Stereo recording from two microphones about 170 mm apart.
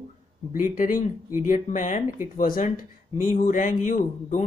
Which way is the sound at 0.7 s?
50° left (ahead or behind).